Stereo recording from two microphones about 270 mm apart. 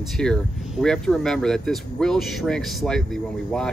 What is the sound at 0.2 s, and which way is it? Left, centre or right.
Speech, centre.